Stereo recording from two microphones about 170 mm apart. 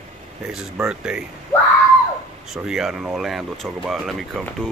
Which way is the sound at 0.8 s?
5° right (ahead or behind).